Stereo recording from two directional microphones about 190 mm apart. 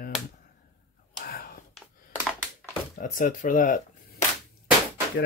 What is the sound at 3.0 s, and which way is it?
Speech, 45° left (ahead or behind).